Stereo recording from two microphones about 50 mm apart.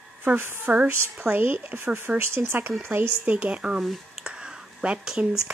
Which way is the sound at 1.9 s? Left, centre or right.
Right.